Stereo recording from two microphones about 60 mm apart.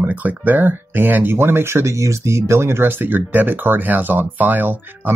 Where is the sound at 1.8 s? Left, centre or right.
Right.